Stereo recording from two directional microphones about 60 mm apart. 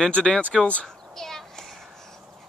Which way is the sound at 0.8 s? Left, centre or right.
Centre.